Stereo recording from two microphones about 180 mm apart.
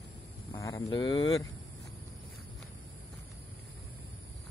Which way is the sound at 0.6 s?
20° left (ahead or behind).